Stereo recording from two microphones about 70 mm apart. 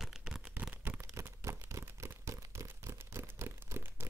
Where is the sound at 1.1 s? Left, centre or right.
Right.